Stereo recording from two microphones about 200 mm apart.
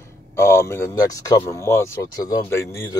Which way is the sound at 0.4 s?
15° left (ahead or behind).